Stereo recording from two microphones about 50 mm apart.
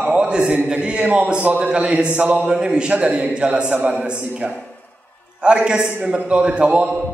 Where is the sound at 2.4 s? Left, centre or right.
Centre.